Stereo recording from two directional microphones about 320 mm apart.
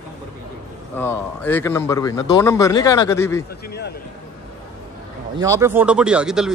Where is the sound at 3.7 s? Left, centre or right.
Left.